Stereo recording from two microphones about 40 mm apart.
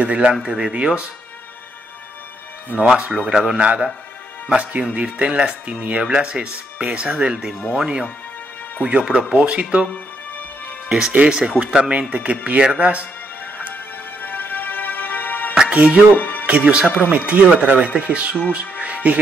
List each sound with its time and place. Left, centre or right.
0.0 s speech: right
0.3 s speech: right
2.8 s speech: right
10.9 s speech: centre
12.1 s speech: right
14.2 s music: left
15.7 s speech: right
16.2 s music: left
16.4 s speech: right
18.8 s music: right